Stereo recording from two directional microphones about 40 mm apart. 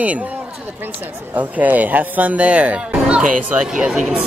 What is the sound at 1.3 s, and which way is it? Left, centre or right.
Speech, right.